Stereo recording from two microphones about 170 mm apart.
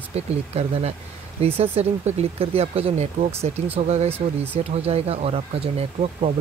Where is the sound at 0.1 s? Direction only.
35° right (ahead or behind).